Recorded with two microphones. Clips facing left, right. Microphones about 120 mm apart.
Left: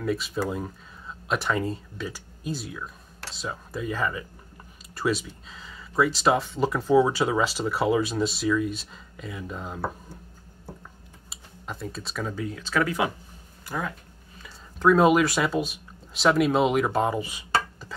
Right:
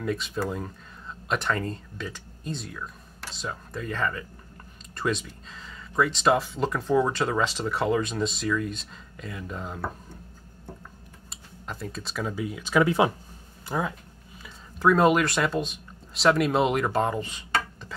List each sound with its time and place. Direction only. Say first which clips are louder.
0.0 s speech: left 2 dB; 5° left (ahead or behind)
11.2 s speech: left 1 dB; centre (ahead or behind); by 13.9 s 20° right (ahead or behind)
14.4 s speech: left 1 dB; centre (ahead or behind)